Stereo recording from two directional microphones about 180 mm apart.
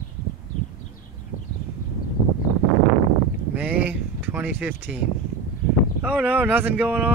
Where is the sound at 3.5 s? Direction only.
10° right (ahead or behind).